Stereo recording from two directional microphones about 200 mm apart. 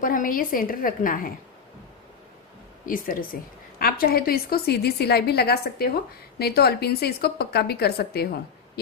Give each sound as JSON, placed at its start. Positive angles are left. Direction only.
{"t": 0.0, "sound": "a woman's voice", "side_deg": 45}
{"t": 2.8, "sound": "a woman's voice", "side_deg": 45}